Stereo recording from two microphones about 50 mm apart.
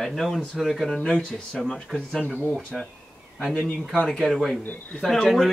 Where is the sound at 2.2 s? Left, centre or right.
Centre.